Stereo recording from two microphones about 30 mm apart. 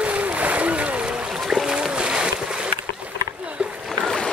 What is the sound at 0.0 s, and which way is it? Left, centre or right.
Splash, right.